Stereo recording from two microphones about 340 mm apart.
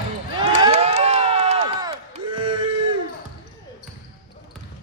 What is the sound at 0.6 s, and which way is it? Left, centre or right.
Crowd, centre.